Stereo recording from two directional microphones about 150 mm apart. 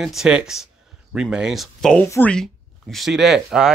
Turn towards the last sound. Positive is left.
turn(degrees=-5)  # may be behind; listen again after turning